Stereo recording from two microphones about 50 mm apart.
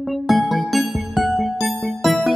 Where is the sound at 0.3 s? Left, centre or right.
Centre.